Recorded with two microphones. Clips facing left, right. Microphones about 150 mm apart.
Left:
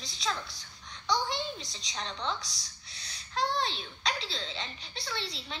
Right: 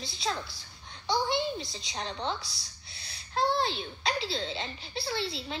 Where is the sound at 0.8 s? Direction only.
30° right (ahead or behind).